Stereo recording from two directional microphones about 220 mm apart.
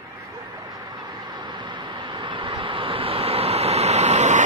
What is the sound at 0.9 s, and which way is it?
Vehicle, 20° right (ahead or behind).